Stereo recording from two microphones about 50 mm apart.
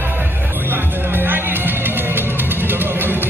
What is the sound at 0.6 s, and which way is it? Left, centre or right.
Music, right.